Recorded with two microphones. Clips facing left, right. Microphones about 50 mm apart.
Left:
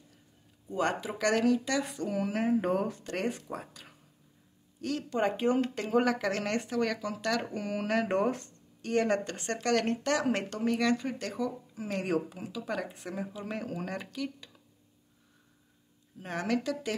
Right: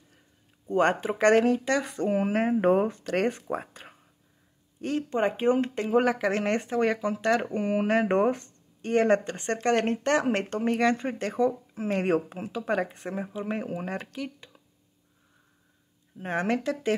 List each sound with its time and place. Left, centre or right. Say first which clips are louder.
0.7 s speech: right 7 dB; right
16.2 s speech: right 4 dB; right